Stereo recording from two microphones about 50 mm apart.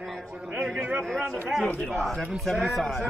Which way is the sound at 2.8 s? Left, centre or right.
Centre.